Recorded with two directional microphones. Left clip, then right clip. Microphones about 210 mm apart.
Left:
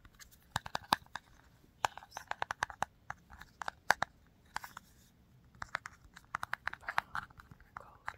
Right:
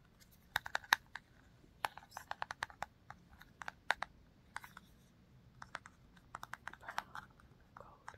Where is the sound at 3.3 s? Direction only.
30° left (ahead or behind).